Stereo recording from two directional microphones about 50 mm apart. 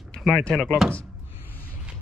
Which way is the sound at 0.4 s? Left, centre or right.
Centre.